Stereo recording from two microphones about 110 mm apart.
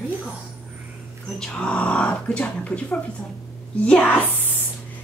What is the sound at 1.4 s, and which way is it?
A woman's voice, 10° left (ahead or behind).